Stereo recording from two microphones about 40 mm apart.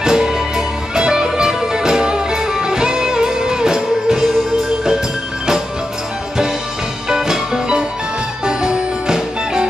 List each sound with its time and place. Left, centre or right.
0.0 s music: centre
7.1 s music: centre